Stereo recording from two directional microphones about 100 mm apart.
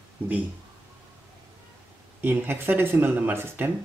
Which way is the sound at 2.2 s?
20° right (ahead or behind).